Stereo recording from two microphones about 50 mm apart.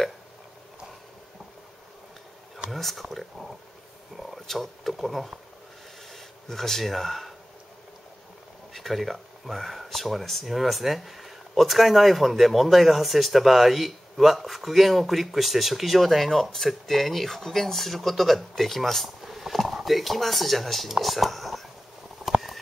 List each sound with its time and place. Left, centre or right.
2.7 s speech: centre
8.7 s speech: centre
22.2 s a sound: centre